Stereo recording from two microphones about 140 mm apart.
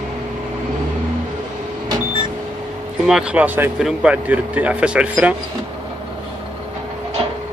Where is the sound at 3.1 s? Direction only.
5° right (ahead or behind).